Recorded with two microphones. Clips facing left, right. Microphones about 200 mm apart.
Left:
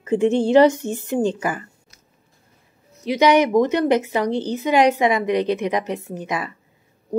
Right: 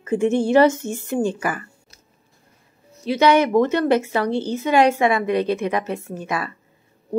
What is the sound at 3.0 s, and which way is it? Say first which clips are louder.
Speech: even; 15° left (ahead or behind).